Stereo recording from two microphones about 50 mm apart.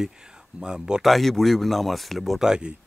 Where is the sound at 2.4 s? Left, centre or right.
Centre.